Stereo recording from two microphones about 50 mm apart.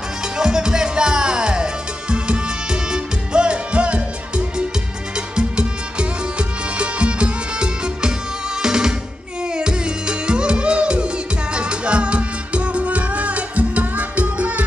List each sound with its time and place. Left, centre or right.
0.4 s music: centre
5.1 s music: centre